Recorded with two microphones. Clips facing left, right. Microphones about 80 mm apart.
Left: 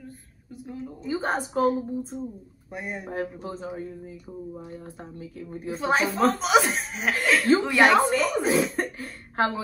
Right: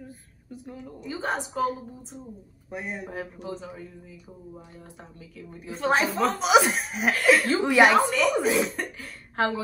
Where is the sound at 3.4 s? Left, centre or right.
Left.